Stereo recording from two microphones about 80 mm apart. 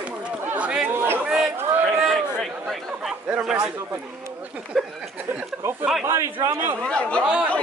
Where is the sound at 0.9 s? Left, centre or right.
Right.